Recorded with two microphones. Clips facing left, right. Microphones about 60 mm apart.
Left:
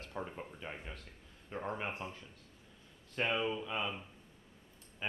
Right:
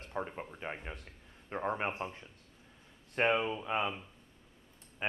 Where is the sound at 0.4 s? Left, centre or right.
Right.